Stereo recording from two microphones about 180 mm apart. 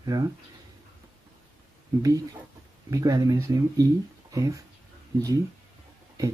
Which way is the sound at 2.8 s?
20° right (ahead or behind).